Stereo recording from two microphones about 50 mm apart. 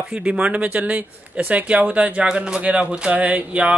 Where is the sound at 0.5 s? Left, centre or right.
Right.